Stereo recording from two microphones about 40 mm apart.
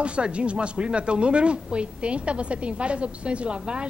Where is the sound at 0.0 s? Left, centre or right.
Right.